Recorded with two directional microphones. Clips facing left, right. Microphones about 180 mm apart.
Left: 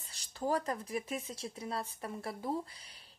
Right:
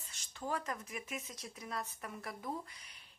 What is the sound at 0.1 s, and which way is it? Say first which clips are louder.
A woman's voice: left 6 dB; 35° left (ahead or behind).